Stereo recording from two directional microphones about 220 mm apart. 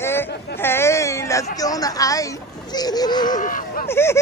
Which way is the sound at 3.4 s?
35° left (ahead or behind).